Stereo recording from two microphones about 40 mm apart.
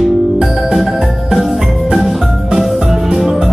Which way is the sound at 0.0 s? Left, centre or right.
Centre.